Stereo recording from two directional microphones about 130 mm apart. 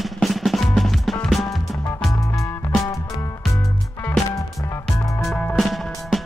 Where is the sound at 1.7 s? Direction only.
25° left (ahead or behind).